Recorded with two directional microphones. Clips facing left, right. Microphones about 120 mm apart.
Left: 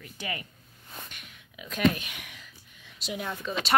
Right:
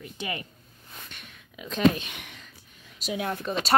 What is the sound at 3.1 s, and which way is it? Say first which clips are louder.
Speech: right 5 dB; 70° right (ahead or behind).